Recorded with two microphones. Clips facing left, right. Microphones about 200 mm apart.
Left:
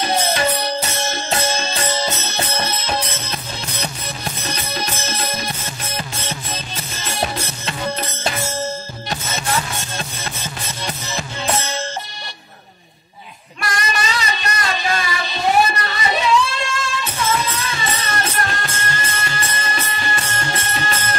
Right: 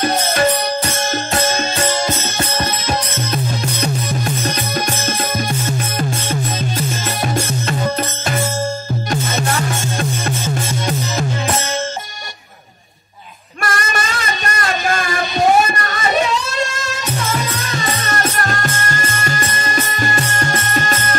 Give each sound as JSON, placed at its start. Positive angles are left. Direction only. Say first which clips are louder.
{"t": 0.0, "sound": "music", "louder": "right 3 dB", "side_deg": -50}
{"t": 13.6, "sound": "music", "louder": "right 2 dB", "side_deg": -50}